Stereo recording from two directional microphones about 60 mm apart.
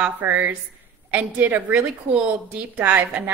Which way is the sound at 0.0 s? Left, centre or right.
Right.